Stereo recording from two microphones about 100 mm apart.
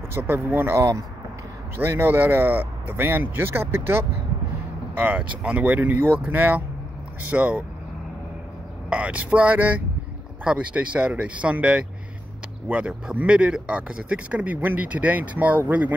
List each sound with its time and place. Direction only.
0.1 s speech: 20° right (ahead or behind)
8.9 s speech: 15° right (ahead or behind)